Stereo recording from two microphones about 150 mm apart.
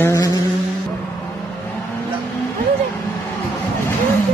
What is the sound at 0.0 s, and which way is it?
Music, 20° left (ahead or behind).